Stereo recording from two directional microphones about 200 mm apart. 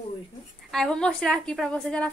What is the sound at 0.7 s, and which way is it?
A woman's voice, 5° left (ahead or behind).